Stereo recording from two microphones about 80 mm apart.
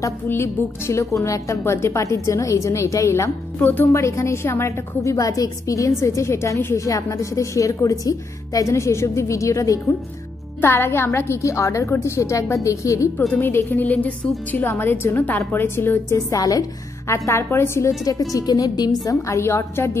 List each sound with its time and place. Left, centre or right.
0.3 s a woman's voice: left
3.5 s a woman's voice: left
3.9 s a woman's voice: left
10.6 s a woman's voice: left
13.3 s a woman's voice: left
16.3 s a woman's voice: left
17.1 s a woman's voice: left
18.3 s a woman's voice: left
19.0 s a woman's voice: left